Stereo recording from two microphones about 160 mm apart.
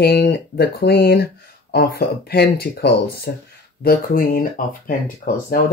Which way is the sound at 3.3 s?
80° left.